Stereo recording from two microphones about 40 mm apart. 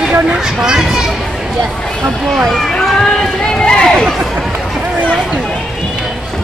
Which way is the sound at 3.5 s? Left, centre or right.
Left.